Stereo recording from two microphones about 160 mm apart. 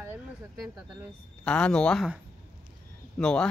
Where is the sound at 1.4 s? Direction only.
5° left (ahead or behind).